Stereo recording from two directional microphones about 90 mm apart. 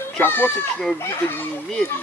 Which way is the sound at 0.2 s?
20° left (ahead or behind).